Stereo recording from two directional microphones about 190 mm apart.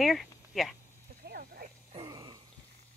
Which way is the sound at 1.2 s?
55° right (ahead or behind).